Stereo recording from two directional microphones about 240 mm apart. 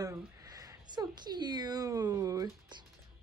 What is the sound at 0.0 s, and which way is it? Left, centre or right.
Speech, centre.